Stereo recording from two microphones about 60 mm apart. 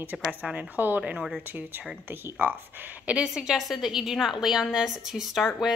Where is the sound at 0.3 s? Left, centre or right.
Centre.